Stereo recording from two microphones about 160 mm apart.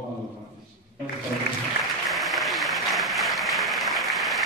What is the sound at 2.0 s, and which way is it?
Applause, centre (ahead or behind).